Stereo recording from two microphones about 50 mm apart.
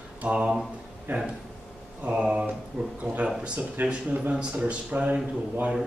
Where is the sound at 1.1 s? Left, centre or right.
Right.